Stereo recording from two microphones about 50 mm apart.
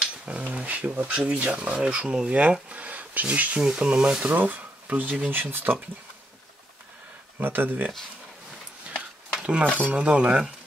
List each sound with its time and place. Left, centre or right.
0.2 s speech: right
3.5 s speech: centre
4.2 s speech: right
7.3 s speech: right
8.9 s a sound: centre
9.9 s speech: right